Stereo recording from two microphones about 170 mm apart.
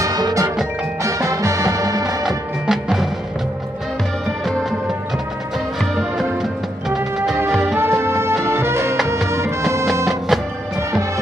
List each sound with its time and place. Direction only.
0.0 s music: 20° right (ahead or behind)
2.2 s music: centre (ahead or behind)
5.8 s music: centre (ahead or behind)
10.0 s music: centre (ahead or behind)
10.8 s music: 15° right (ahead or behind)